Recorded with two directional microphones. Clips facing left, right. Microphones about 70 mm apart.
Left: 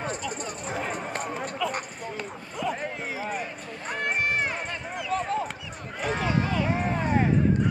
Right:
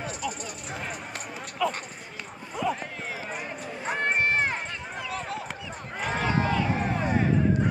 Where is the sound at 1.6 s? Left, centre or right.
Centre.